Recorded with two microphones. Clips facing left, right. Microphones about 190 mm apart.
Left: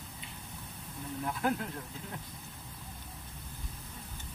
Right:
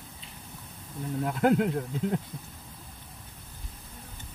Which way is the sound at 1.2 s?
75° right (ahead or behind).